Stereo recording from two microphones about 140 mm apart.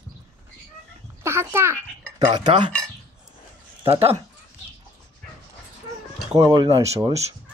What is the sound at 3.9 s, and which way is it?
Speech, 45° right (ahead or behind).